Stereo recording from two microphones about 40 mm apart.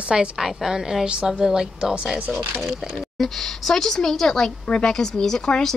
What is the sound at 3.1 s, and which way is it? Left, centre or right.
Speech, centre.